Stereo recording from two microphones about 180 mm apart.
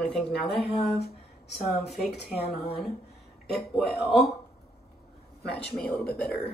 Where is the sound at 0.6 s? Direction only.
65° left (ahead or behind).